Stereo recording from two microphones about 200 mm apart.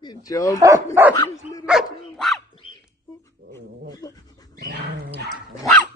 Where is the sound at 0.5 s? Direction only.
15° right (ahead or behind).